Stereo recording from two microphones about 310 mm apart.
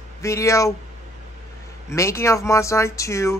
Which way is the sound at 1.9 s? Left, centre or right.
Centre.